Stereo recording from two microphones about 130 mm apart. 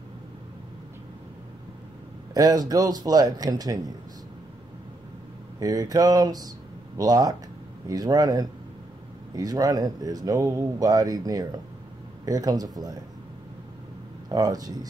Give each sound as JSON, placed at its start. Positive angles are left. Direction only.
{"t": 2.3, "sound": "speech", "side_deg": -30}
{"t": 5.6, "sound": "speech", "side_deg": -30}
{"t": 14.3, "sound": "speech", "side_deg": -30}